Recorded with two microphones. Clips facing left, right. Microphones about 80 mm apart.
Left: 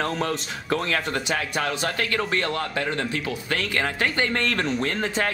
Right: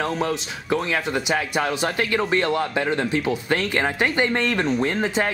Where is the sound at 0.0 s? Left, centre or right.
Centre.